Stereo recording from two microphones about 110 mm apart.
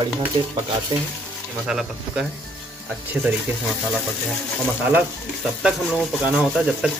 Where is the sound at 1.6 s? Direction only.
5° right (ahead or behind).